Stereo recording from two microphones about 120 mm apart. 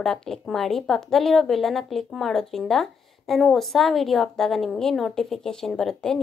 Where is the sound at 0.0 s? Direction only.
5° left (ahead or behind).